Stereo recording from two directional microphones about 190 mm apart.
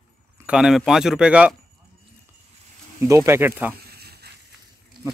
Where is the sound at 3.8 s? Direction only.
55° right (ahead or behind).